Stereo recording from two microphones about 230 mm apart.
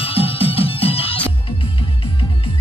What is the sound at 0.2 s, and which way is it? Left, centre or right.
Music, left.